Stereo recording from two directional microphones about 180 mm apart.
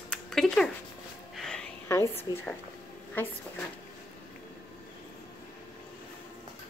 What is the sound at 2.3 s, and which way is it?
Speech, 20° left (ahead or behind).